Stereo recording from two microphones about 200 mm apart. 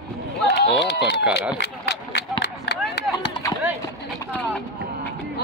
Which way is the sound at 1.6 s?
55° left (ahead or behind).